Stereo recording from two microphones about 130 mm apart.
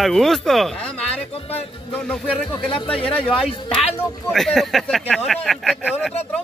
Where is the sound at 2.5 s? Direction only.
40° left (ahead or behind).